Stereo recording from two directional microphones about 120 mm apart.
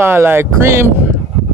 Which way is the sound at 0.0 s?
20° right (ahead or behind).